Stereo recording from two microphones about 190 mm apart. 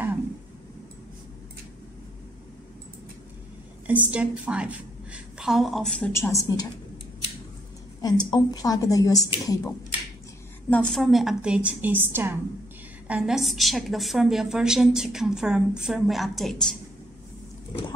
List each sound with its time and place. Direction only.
3.8 s a woman's voice: 10° right (ahead or behind); by 6.7 s 20° left (ahead or behind)
8.0 s a woman's voice: 20° left (ahead or behind)
10.7 s a woman's voice: 5° left (ahead or behind)